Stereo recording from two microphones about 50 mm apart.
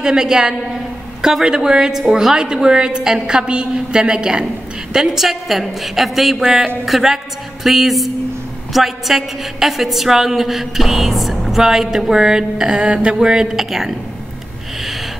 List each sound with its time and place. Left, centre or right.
0.0 s a woman's voice: centre